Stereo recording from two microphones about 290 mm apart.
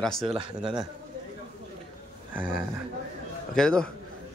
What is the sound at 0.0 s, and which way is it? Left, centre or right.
Speech, centre.